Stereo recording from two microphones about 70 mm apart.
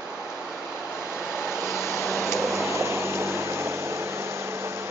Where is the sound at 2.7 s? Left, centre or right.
Right.